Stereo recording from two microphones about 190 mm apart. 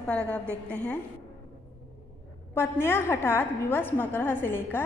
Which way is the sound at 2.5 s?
10° left (ahead or behind).